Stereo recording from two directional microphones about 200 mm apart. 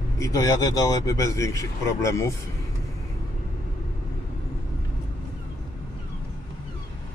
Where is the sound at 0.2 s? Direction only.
15° left (ahead or behind).